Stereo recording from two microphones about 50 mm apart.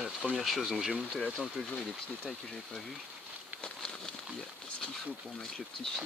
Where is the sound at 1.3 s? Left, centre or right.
Centre.